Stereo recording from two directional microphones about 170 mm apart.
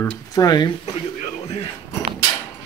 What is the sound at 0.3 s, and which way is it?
Speech, 25° left (ahead or behind).